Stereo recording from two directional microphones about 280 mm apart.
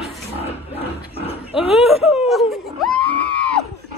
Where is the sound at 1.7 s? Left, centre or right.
Centre.